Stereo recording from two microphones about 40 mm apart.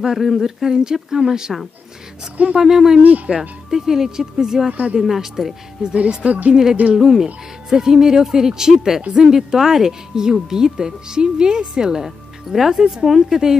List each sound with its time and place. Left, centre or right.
0.0 s speech: centre
2.5 s speech: centre
3.0 s speech: right
3.3 s speech: centre
5.9 s speech: right
6.5 s speech: centre